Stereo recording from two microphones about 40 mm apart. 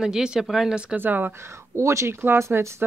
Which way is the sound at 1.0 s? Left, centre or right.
Right.